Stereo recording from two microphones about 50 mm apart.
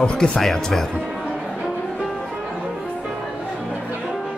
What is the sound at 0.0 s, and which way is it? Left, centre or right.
Speech, centre.